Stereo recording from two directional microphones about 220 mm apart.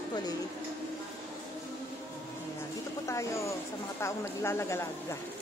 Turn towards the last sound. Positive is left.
turn(degrees=15)  # may be behind; listen again after turning